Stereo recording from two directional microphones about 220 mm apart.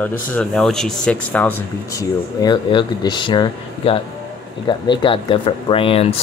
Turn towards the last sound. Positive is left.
turn(degrees=25)  # may be behind; listen again after turning